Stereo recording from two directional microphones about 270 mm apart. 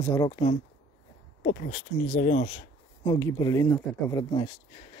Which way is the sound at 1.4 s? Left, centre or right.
Left.